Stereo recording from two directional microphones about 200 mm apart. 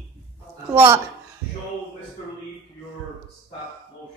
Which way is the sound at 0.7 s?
15° right (ahead or behind).